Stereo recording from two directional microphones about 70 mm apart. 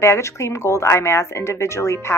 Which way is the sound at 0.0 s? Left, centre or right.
Left.